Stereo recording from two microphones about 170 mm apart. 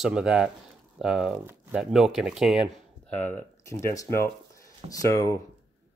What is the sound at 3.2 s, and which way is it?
Speech, 10° left (ahead or behind).